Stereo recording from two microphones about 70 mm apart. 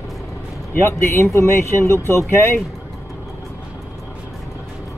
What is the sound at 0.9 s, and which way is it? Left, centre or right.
Speech, left.